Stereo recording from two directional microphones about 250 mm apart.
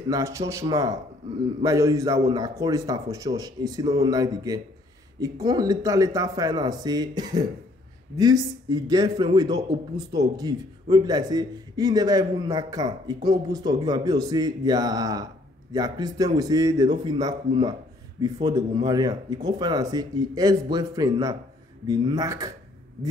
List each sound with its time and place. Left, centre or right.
0.1 s a man's voice: centre